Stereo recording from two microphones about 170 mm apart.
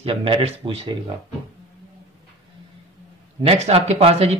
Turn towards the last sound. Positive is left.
turn(degrees=-40)  # may be behind; listen again after turning